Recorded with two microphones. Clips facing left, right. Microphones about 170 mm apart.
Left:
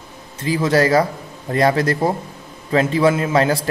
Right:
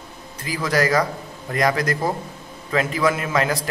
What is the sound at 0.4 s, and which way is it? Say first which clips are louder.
A man's voice: left 5 dB; 25° left (ahead or behind).